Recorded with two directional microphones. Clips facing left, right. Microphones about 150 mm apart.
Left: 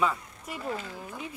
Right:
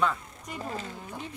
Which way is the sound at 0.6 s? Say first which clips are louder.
Left 2 dB; 35° right (ahead or behind).